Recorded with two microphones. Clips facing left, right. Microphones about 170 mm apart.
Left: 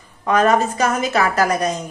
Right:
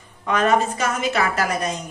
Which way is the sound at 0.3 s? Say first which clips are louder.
Left 3 dB; 40° left (ahead or behind).